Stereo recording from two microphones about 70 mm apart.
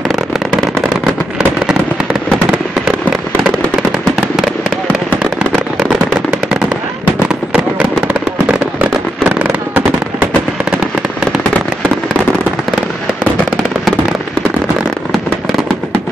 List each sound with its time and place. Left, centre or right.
9.2 s fireworks: right